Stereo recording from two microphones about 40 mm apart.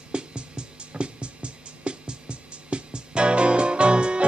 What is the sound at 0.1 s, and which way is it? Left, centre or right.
Music, right.